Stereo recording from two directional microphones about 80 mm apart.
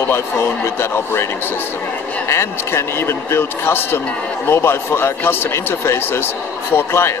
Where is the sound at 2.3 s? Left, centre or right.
Left.